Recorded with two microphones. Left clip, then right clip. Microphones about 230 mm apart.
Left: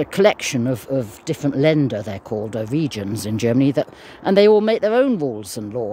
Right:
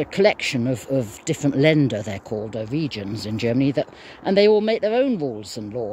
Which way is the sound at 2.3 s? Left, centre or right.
Left.